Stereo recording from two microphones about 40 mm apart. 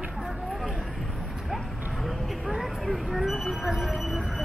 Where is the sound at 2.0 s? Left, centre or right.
Centre.